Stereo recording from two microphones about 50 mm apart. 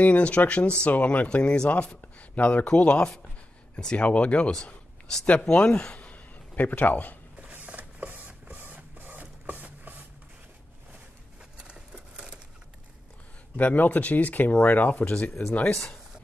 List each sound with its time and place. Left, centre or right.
0.0 s speech: left
5.5 s a man's voice: left
7.4 s printer: right
11.6 s a sound: centre
13.6 s speech: left